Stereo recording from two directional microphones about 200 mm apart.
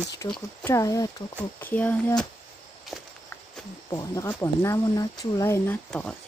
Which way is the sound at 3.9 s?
15° left (ahead or behind).